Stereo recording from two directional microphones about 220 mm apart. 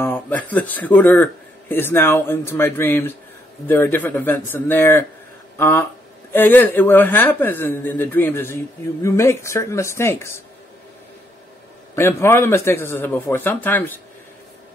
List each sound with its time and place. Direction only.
0.0 s a man's voice: 10° left (ahead or behind)
11.9 s a man's voice: 10° left (ahead or behind)